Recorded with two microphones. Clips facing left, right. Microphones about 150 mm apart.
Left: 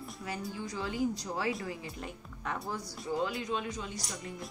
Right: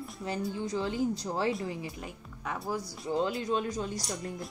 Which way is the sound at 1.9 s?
5° right (ahead or behind).